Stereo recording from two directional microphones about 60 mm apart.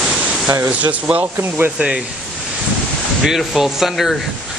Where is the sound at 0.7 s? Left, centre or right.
Right.